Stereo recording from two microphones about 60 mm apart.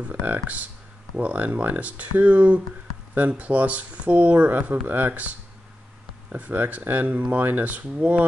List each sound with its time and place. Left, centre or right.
0.1 s speech: right
6.3 s speech: right